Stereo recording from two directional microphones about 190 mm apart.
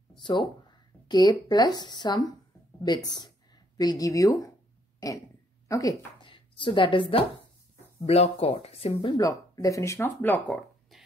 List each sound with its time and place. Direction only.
0.2 s speech: 25° left (ahead or behind)
5.7 s speech: 20° left (ahead or behind); by 8.9 s 35° left (ahead or behind)
9.0 s speech: 20° left (ahead or behind)
10.5 s a sound: centre (ahead or behind)